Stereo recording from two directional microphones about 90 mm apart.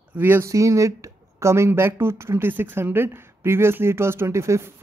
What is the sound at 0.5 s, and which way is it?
Speech, 35° right (ahead or behind).